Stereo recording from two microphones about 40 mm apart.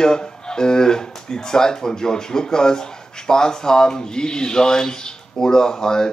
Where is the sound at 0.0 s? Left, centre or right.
Centre.